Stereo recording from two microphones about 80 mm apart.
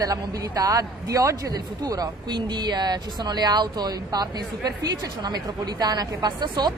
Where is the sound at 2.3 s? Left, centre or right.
Right.